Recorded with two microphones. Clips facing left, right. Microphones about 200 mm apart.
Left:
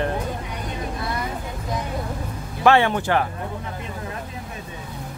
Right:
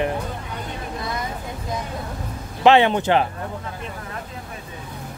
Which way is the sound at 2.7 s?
20° right (ahead or behind).